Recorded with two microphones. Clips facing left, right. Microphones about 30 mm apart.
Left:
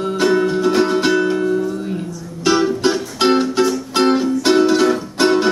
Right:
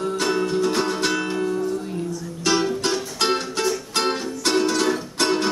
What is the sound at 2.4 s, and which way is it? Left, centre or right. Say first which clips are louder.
Music: left 6 dB; centre.